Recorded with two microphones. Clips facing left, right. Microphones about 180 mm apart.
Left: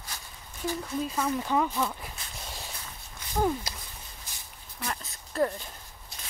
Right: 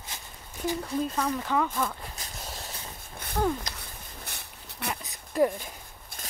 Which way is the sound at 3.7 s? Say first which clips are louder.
Even; 10° left (ahead or behind).